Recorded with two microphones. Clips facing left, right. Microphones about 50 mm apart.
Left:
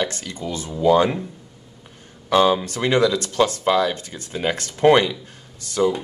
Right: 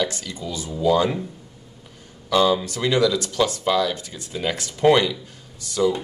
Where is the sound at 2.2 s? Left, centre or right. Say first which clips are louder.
Left 2 dB; left.